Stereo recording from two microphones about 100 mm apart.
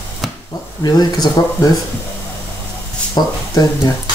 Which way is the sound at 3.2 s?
45° left (ahead or behind).